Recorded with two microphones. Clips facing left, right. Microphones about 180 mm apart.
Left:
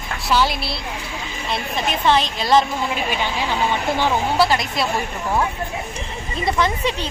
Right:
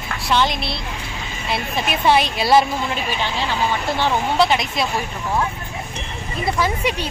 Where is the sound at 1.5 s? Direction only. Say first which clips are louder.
Right 1 dB; 10° right (ahead or behind).